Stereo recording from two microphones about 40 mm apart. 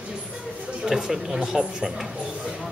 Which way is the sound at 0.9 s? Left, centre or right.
Centre.